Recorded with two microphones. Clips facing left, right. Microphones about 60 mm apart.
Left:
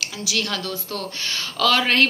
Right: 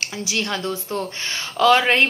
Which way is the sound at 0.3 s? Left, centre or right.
Right.